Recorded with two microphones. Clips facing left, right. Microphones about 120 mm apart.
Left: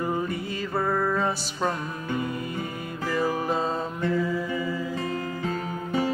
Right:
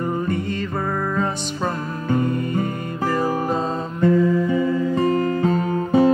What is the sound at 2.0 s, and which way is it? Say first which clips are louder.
Music: right 9 dB; 50° right (ahead or behind).